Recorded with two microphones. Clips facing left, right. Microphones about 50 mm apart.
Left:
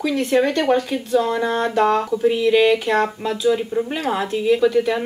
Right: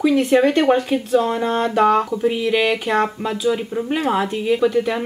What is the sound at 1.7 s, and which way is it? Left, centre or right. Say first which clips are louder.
Speech: right 3 dB; centre.